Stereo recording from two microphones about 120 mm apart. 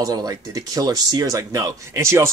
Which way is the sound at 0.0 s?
30° right (ahead or behind).